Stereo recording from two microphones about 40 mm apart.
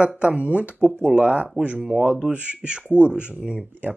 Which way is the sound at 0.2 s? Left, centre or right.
Right.